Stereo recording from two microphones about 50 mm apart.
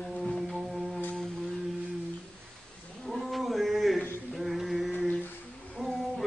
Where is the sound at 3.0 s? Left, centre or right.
Centre.